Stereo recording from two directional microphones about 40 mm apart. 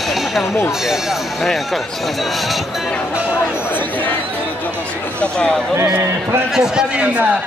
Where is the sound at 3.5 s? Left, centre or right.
Left.